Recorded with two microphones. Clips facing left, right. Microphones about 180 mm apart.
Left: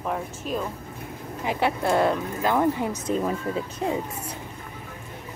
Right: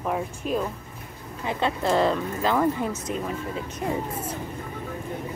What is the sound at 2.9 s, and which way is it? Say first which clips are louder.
Speech: left 3 dB; 35° left (ahead or behind).